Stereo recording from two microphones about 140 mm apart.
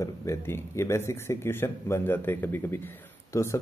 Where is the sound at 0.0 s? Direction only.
20° left (ahead or behind).